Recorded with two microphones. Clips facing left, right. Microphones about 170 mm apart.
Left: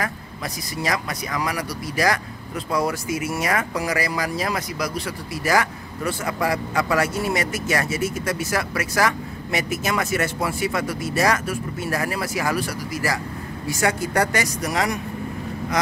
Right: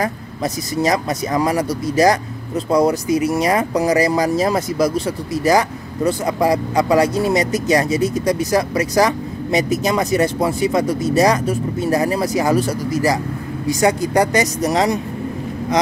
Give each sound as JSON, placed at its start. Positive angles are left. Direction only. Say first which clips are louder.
{"t": 0.9, "sound": "speech", "louder": "right 8 dB", "side_deg": -25}
{"t": 3.1, "sound": "speech", "louder": "right 8 dB", "side_deg": -35}
{"t": 3.7, "sound": "speech", "louder": "right 9 dB", "side_deg": -20}
{"t": 6.2, "sound": "speech", "louder": "right 6 dB", "side_deg": -35}
{"t": 6.7, "sound": "speech", "louder": "right 7 dB", "side_deg": -15}